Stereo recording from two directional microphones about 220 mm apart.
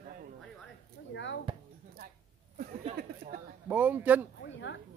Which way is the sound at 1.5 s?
25° right (ahead or behind).